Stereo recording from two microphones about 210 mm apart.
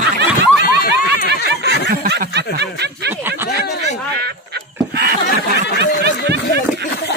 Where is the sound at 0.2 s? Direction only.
55° right (ahead or behind).